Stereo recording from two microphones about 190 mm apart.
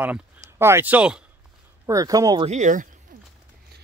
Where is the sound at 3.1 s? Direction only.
45° right (ahead or behind).